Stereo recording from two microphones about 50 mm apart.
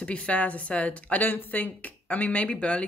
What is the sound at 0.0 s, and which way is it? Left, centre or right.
A woman's voice, left.